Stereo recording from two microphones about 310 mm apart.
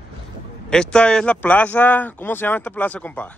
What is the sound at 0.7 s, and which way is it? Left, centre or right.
Speech, centre.